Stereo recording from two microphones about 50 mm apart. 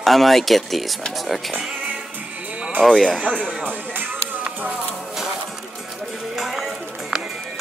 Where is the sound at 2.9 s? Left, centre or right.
Centre.